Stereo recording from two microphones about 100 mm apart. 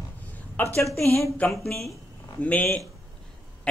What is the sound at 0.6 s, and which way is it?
Speech, 30° left (ahead or behind).